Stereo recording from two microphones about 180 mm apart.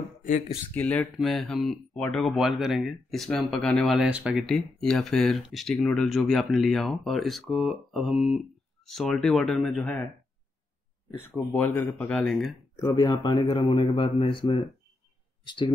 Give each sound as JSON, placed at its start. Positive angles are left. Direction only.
{"t": 0.7, "sound": "speech", "side_deg": 5}
{"t": 11.1, "sound": "speech", "side_deg": 15}
{"t": 12.7, "sound": "speech", "side_deg": 20}